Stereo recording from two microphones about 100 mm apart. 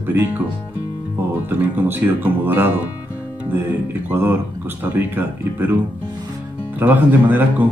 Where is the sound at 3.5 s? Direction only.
15° right (ahead or behind).